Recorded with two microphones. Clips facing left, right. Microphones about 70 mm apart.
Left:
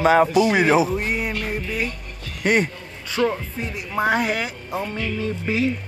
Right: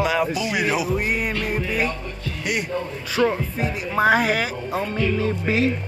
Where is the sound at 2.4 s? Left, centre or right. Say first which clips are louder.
Left 7 dB; left.